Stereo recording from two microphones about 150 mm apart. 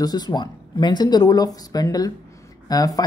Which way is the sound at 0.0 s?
25° left (ahead or behind).